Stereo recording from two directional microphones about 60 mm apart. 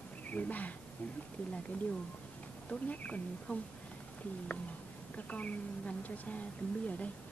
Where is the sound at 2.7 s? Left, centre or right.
Left.